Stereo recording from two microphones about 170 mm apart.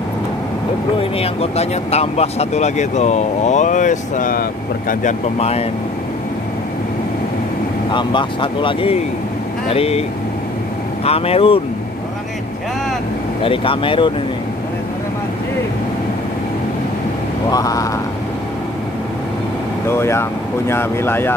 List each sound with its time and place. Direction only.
1.2 s speech: 35° left (ahead or behind); by 5.1 s 55° left (ahead or behind)
5.4 s speech: 35° left (ahead or behind)
7.9 s speech: 30° left (ahead or behind)
11.1 s speech: 35° left (ahead or behind)
13.4 s speech: 30° left (ahead or behind)
17.5 s speech: 20° left (ahead or behind)
19.9 s speech: 15° left (ahead or behind)